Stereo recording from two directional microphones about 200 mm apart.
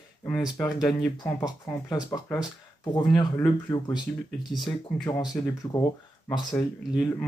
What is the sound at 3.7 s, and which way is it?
Speech, 15° left (ahead or behind).